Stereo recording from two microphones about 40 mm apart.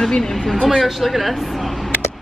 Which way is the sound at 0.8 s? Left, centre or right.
Centre.